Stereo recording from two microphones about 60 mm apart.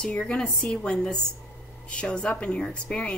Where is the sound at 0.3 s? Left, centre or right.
Centre.